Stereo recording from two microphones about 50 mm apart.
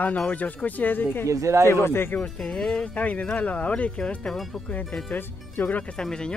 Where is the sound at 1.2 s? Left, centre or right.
Right.